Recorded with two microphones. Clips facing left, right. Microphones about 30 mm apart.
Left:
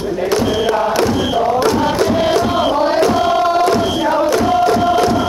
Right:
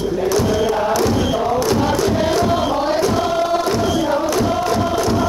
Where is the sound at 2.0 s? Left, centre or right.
Left.